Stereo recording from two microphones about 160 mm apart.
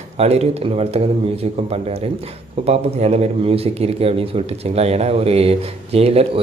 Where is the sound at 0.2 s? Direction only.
40° right (ahead or behind).